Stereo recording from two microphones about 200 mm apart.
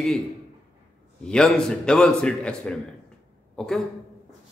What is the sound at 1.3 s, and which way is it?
A man's voice, 5° left (ahead or behind).